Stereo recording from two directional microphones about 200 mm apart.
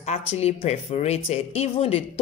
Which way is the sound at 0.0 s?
30° left (ahead or behind).